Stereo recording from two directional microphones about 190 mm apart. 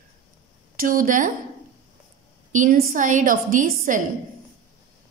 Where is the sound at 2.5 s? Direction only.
45° right (ahead or behind).